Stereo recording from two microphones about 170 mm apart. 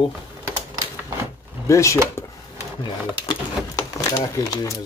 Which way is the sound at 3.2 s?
25° left (ahead or behind).